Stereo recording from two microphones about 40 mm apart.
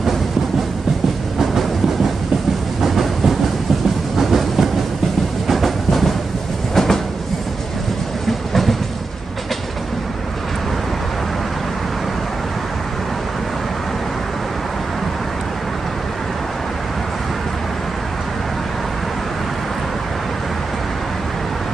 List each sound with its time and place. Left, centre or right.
1.4 s train: centre
8.3 s train: centre